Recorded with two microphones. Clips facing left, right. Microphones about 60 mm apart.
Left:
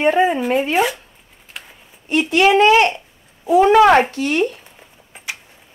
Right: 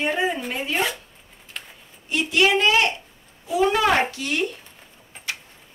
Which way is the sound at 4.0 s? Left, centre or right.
Left.